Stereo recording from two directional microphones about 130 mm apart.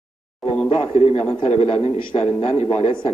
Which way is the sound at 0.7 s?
50° left (ahead or behind).